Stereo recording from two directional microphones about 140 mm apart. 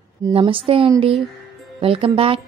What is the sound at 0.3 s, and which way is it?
A woman's voice, 40° right (ahead or behind).